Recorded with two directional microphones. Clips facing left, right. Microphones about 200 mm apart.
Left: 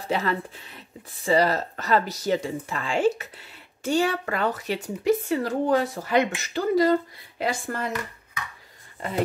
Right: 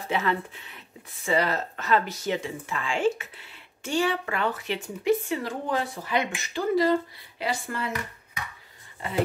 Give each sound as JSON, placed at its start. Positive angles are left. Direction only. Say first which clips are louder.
{"t": 0.1, "sound": "speech", "louder": "left 1 dB", "side_deg": 35}